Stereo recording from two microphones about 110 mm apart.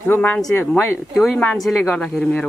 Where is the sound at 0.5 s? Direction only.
25° left (ahead or behind).